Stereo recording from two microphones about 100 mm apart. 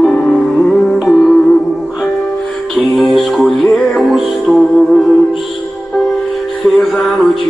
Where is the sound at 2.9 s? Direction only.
Centre (ahead or behind).